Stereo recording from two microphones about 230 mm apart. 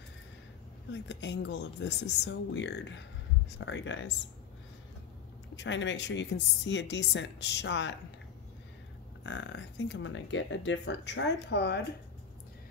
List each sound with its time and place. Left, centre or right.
0.9 s speech: left
5.6 s speech: left
9.2 s speech: left